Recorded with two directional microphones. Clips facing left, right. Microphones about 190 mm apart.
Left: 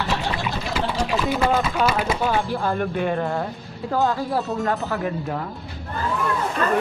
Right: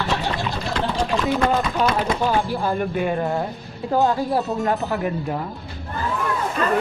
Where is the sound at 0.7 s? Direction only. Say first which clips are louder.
Right 1 dB; 5° left (ahead or behind); by 5.4 s 15° right (ahead or behind).